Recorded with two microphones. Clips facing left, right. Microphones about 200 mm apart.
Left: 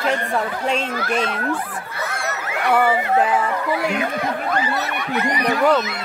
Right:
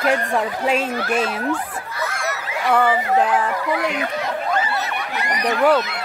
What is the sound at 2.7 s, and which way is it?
Speech, 5° left (ahead or behind).